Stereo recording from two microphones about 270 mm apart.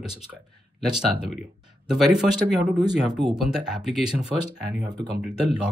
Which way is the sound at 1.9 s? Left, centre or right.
Centre.